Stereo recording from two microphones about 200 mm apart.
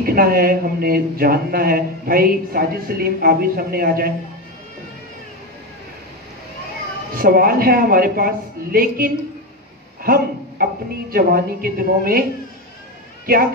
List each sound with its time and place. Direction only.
0.0 s speech: 45° right (ahead or behind)
7.2 s speech: 45° right (ahead or behind)